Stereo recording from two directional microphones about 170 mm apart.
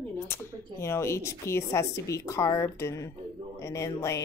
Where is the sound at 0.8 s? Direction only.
15° left (ahead or behind).